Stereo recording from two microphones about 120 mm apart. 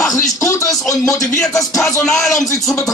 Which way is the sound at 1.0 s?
25° left (ahead or behind).